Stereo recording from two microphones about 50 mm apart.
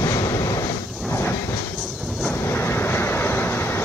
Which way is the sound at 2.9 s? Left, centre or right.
Left.